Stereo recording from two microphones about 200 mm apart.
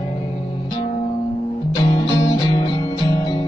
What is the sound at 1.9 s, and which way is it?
Music, 25° left (ahead or behind).